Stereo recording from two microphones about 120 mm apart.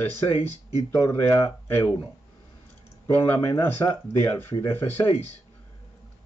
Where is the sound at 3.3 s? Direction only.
25° left (ahead or behind).